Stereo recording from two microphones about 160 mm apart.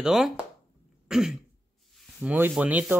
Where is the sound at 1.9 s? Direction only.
10° right (ahead or behind).